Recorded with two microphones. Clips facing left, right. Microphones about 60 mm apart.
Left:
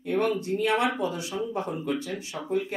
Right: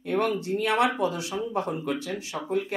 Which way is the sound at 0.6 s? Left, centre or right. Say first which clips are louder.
Right 2 dB; centre.